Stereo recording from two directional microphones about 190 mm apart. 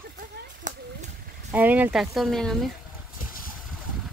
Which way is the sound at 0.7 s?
40° right (ahead or behind).